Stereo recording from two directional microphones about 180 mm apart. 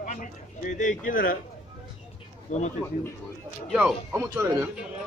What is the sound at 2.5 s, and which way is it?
Speech, 45° left (ahead or behind).